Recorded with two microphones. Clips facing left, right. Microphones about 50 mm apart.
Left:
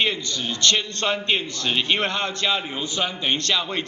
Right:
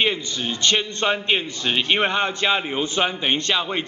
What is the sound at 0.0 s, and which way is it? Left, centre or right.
A man's voice, centre.